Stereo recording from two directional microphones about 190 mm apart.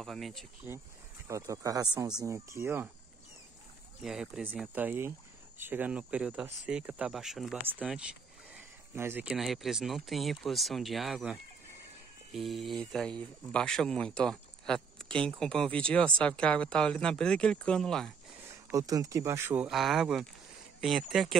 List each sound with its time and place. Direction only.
0.0 s speech: centre (ahead or behind)
1.2 s speech: 15° right (ahead or behind)
4.0 s speech: 5° right (ahead or behind)
18.7 s speech: 20° right (ahead or behind); by 21.4 s centre (ahead or behind)